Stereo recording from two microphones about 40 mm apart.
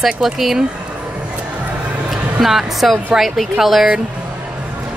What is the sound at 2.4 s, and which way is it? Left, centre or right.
A woman's voice, centre.